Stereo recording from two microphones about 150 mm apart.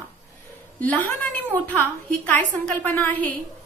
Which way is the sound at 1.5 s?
10° left (ahead or behind).